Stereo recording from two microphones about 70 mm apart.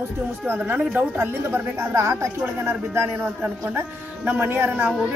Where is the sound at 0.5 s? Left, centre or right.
Right.